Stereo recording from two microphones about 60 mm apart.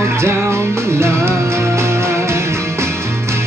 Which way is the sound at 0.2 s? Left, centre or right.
Right.